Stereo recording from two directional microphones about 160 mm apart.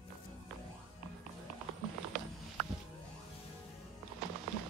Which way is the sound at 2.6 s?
5° right (ahead or behind).